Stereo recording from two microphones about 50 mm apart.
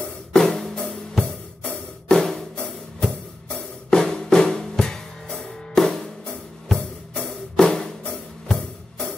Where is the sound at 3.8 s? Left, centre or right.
Centre.